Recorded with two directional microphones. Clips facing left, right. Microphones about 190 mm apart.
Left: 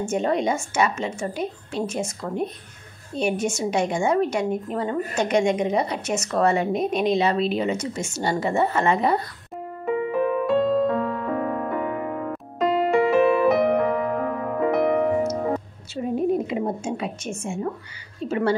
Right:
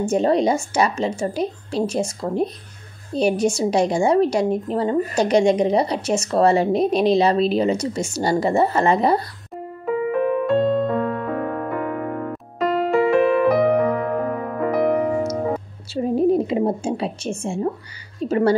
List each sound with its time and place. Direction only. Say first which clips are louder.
0.0 s a woman's voice: right 5 dB; 35° right (ahead or behind)
9.8 s music: right 2 dB; centre (ahead or behind)
15.9 s a woman's voice: right 5 dB; 35° right (ahead or behind)